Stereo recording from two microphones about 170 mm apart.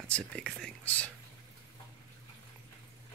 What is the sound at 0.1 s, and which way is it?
Speech, 5° left (ahead or behind).